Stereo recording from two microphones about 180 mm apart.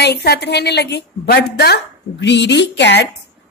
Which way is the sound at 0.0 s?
65° left (ahead or behind).